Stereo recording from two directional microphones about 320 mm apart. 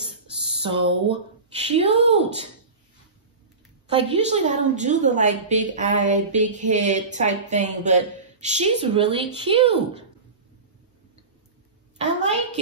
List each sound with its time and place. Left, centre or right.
0.4 s speech: centre
3.8 s a woman's voice: centre
12.0 s a sound: right